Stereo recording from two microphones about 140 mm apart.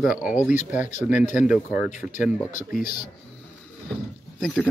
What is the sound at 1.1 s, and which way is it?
Speech, 65° left (ahead or behind).